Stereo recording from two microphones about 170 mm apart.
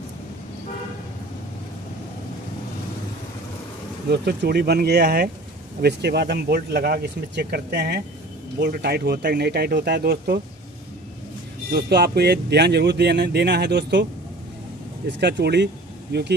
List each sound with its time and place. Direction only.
4.1 s speech: 75° right (ahead or behind)
11.7 s speech: 70° right (ahead or behind); by 14.0 s 90° right
15.0 s speech: 85° right